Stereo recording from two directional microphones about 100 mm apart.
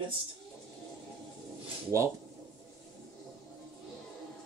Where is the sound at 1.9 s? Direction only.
30° right (ahead or behind).